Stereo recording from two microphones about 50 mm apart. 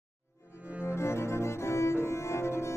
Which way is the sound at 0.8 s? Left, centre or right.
Left.